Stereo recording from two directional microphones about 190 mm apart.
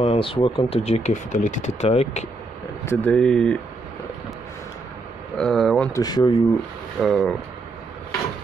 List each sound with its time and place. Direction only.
0.0 s speech: 30° left (ahead or behind)
2.8 s speech: 10° left (ahead or behind)
5.4 s speech: centre (ahead or behind)
5.9 s speech: 20° left (ahead or behind)
7.0 s speech: centre (ahead or behind)